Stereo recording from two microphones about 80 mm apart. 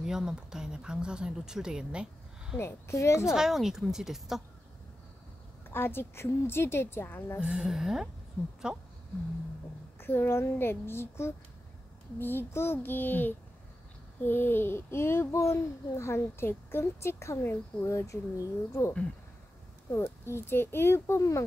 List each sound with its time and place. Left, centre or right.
0.0 s speech: centre
2.6 s a child's voice: left
3.3 s speech: centre
5.7 s a child's voice: left
7.3 s speech: centre
9.9 s a child's voice: left
17.8 s a child's voice: left